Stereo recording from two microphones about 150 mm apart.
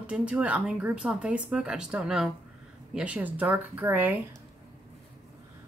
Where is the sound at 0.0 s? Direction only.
10° right (ahead or behind).